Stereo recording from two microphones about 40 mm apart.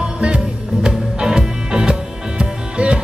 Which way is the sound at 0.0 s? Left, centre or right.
Right.